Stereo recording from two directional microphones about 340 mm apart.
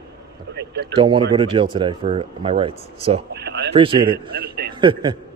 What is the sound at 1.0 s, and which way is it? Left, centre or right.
Speech, centre.